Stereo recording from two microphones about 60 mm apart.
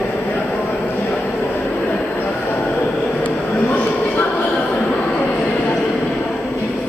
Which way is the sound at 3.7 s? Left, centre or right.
Left.